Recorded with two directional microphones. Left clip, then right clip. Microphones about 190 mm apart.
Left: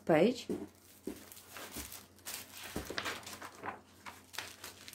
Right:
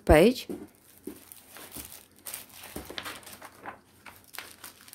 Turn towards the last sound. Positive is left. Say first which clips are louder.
# right 1 dB
turn(degrees=5)  # may be behind; listen again after turning